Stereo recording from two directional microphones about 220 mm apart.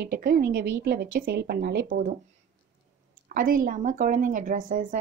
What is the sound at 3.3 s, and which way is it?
Speech, 40° right (ahead or behind).